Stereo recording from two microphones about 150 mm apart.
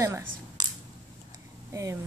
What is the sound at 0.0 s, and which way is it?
Speech, 20° right (ahead or behind).